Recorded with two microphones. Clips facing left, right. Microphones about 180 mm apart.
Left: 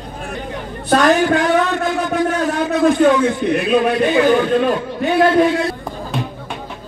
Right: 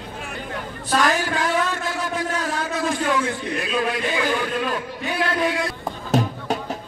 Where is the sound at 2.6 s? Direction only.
65° left (ahead or behind).